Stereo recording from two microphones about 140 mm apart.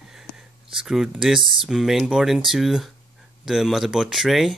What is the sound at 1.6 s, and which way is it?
Speech, centre (ahead or behind).